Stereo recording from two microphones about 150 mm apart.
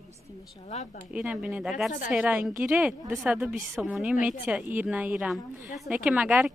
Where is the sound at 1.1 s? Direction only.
5° right (ahead or behind).